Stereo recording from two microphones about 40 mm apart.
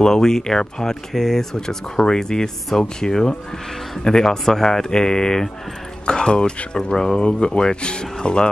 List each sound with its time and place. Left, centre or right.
0.0 s speech: centre
6.9 s speech: centre
7.2 s speech: left